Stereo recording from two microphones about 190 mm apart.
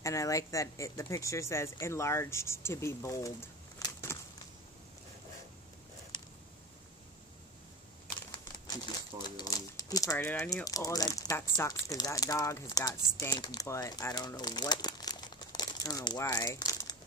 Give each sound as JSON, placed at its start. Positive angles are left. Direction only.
{"t": 0.0, "sound": "speech", "side_deg": 15}
{"t": 9.4, "sound": "a sound", "side_deg": 20}
{"t": 10.2, "sound": "speech", "side_deg": 5}
{"t": 10.5, "sound": "speech", "side_deg": 20}